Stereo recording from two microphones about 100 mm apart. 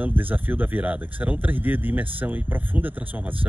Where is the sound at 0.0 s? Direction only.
15° right (ahead or behind).